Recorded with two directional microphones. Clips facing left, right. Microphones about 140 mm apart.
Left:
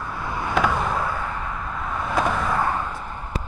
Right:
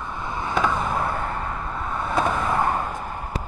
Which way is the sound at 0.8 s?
30° right (ahead or behind).